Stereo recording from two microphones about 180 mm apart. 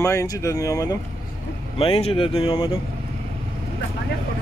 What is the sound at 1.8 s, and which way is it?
Speech, 30° left (ahead or behind).